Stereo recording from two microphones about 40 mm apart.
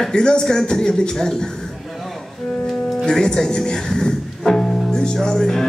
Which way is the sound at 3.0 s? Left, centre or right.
Centre.